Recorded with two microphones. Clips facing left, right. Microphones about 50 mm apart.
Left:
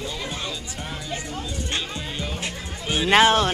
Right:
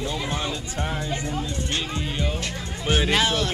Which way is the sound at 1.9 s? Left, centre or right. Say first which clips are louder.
Right 3 dB; centre.